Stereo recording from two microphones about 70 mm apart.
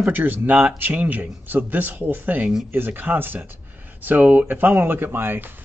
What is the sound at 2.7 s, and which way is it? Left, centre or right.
Speech, right.